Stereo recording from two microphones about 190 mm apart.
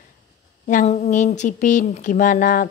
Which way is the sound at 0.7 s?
40° left (ahead or behind).